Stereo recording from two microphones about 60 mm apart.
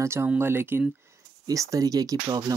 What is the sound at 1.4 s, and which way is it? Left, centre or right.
Speech, right.